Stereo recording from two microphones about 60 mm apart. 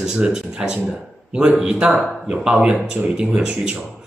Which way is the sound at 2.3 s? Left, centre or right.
Centre.